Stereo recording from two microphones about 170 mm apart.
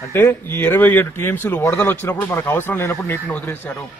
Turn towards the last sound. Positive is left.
turn(degrees=10)  # may be behind; listen again after turning